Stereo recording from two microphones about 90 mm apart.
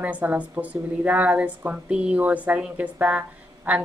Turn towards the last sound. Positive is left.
turn(degrees=-15)  # may be behind; listen again after turning